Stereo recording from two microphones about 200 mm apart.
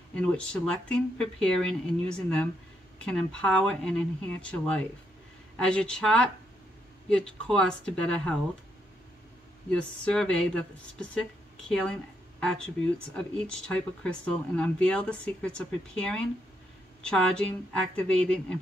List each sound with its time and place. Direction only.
0.1 s speech: 5° left (ahead or behind)
9.7 s speech: 5° left (ahead or behind)
17.9 s speech: 5° left (ahead or behind)